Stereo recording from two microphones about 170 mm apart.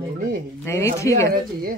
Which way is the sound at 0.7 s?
15° left (ahead or behind).